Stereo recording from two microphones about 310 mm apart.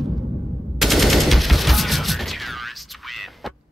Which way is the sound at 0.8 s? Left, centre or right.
Centre.